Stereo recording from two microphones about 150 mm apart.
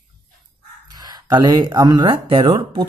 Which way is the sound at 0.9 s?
25° right (ahead or behind).